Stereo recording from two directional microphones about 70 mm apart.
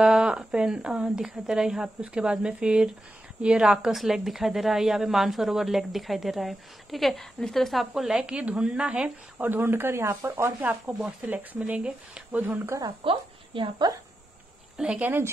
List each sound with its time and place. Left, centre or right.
0.0 s a woman's voice: centre
9.4 s speech: right
10.6 s speech: right
14.8 s a woman's voice: centre